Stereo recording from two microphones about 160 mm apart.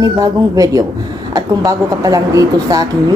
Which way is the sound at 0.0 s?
20° right (ahead or behind).